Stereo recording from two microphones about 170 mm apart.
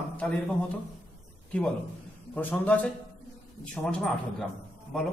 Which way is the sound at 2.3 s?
10° left (ahead or behind).